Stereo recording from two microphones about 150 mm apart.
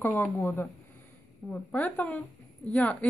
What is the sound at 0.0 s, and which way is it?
Speech, 15° left (ahead or behind).